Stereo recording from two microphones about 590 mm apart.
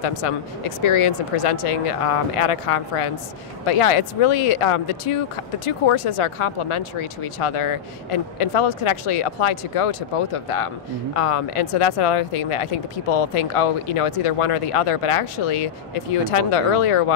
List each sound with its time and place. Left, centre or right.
0.0 s speech: left